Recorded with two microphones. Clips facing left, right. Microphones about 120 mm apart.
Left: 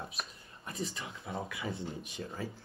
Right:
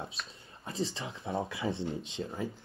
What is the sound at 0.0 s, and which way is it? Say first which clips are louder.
Speech: right 1 dB; 25° right (ahead or behind).